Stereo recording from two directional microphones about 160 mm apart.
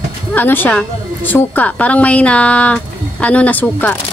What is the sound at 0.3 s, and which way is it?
Speech, 10° left (ahead or behind).